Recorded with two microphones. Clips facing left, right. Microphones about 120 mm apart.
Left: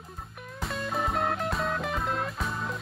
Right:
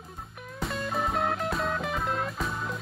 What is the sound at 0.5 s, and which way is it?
Music, centre (ahead or behind).